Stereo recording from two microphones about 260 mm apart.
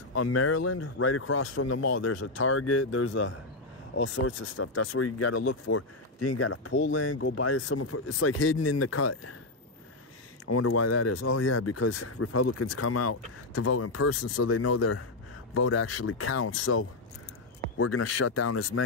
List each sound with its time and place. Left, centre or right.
0.1 s speech: left
10.4 s speech: left